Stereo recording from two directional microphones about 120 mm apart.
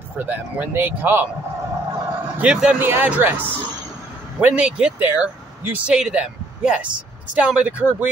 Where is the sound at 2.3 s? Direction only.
10° right (ahead or behind).